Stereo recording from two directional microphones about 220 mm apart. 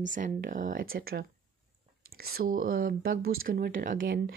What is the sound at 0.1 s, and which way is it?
Speech, 35° right (ahead or behind).